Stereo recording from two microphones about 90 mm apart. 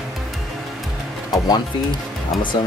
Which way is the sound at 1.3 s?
50° left (ahead or behind).